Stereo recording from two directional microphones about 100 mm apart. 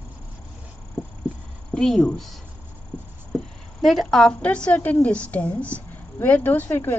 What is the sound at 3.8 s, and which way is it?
A woman's voice, centre (ahead or behind).